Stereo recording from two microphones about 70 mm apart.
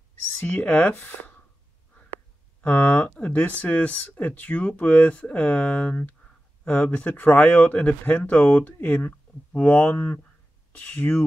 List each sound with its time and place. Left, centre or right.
0.4 s speech: left
2.6 s speech: left
9.9 s speech: left